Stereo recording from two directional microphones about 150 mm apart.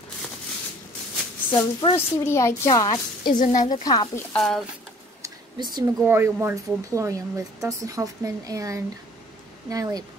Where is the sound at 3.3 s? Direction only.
60° left (ahead or behind).